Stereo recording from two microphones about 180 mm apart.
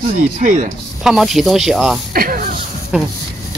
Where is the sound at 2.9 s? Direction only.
5° right (ahead or behind).